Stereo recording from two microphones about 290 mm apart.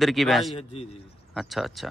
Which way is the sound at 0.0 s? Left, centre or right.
Centre.